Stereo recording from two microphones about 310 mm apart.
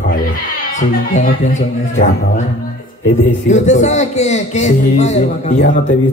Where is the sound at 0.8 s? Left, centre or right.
Left.